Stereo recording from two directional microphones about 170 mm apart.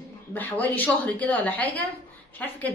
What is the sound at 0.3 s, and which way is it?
A woman's voice, 10° left (ahead or behind).